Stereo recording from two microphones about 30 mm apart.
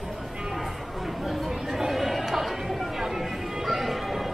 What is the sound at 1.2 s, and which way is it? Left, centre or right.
Chatter, centre.